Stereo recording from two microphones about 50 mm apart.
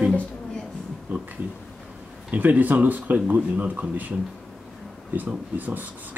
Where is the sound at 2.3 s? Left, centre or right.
Right.